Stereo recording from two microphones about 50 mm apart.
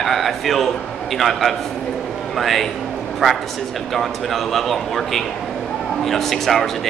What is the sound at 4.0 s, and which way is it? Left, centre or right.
Speech, centre.